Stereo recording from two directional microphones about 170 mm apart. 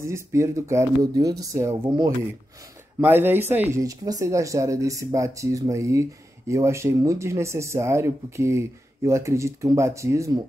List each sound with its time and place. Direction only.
0.0 s speech: 15° right (ahead or behind)